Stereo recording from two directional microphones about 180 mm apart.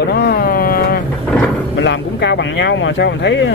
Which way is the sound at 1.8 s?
75° left (ahead or behind).